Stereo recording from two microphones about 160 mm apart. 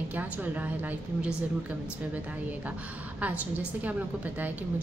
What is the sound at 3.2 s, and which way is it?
A woman's voice, 10° right (ahead or behind).